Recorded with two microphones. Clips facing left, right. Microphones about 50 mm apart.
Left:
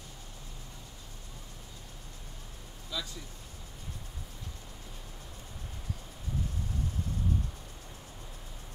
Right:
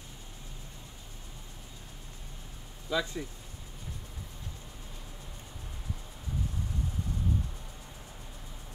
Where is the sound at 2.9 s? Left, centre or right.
Right.